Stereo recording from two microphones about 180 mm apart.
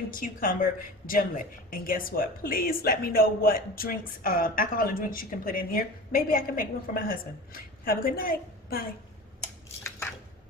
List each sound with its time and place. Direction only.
0.1 s speech: 50° left (ahead or behind)